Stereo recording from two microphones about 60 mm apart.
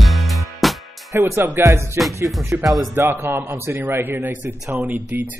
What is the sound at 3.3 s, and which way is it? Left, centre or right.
A man's voice, right.